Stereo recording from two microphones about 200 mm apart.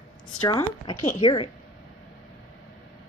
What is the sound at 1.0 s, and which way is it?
Speech, 30° left (ahead or behind).